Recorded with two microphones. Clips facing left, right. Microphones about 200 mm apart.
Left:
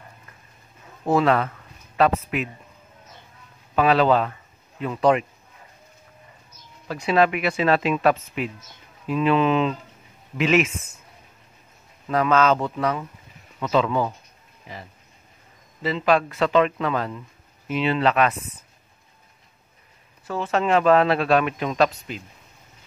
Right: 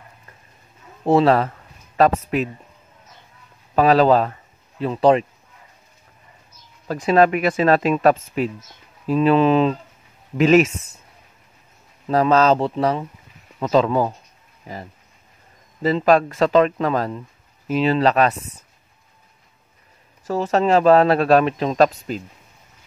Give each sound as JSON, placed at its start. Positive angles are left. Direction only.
{"t": 1.0, "sound": "speech", "side_deg": -30}
{"t": 3.7, "sound": "speech", "side_deg": -40}
{"t": 6.9, "sound": "speech", "side_deg": -45}
{"t": 12.1, "sound": "speech", "side_deg": -35}
{"t": 20.2, "sound": "speech", "side_deg": -40}